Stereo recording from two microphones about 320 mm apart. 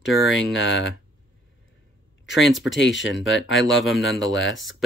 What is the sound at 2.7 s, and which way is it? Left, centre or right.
Speech, left.